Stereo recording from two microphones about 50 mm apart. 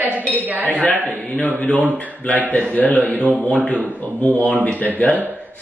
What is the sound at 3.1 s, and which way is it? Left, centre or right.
Speech, right.